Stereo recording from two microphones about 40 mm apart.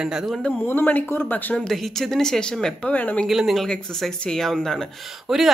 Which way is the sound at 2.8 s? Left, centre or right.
Left.